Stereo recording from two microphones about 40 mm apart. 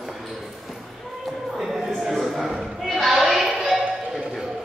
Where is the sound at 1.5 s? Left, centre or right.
Centre.